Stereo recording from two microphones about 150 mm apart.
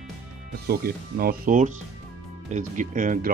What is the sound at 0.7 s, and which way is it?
Speech, 90° right.